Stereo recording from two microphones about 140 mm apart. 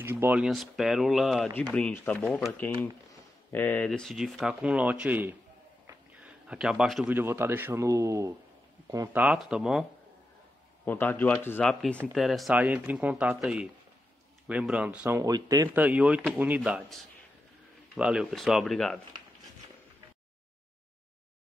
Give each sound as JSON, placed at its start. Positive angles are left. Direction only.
{"t": 0.0, "sound": "speech", "side_deg": -15}
{"t": 3.5, "sound": "speech", "side_deg": 10}
{"t": 7.2, "sound": "a man's voice", "side_deg": -15}
{"t": 9.1, "sound": "speech", "side_deg": -10}
{"t": 10.9, "sound": "speech", "side_deg": 15}
{"t": 12.5, "sound": "a man's voice", "side_deg": -10}
{"t": 15.1, "sound": "speech", "side_deg": -25}
{"t": 15.7, "sound": "a man's voice", "side_deg": -10}
{"t": 17.9, "sound": "speech", "side_deg": -5}